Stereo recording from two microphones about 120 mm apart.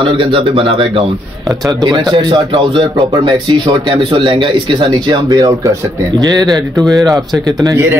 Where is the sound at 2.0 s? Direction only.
35° right (ahead or behind).